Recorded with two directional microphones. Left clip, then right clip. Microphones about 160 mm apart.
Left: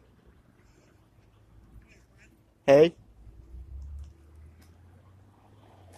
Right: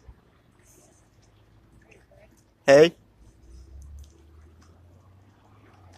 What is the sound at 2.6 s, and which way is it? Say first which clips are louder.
Speech: right 3 dB; 10° left (ahead or behind).